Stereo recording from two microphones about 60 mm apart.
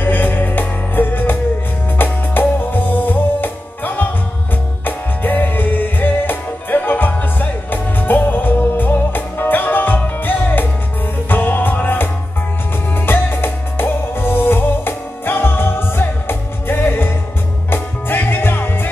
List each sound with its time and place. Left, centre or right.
0.0 s music: left